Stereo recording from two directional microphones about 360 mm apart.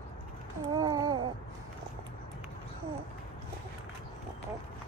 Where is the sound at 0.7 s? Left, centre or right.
Centre.